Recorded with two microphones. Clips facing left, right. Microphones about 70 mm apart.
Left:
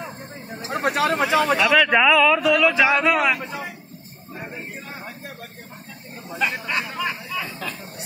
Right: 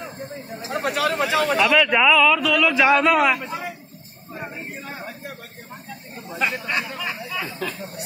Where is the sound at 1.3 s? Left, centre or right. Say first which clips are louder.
Right 1 dB; centre.